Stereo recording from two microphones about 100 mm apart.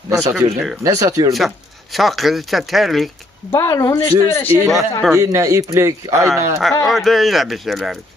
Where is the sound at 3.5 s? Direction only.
30° left (ahead or behind).